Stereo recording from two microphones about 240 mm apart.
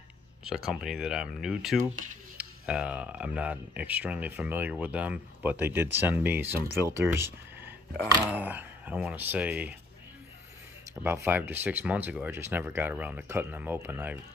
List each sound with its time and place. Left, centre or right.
0.4 s speech: centre
1.8 s speech: right
2.3 s speech: centre
11.1 s speech: centre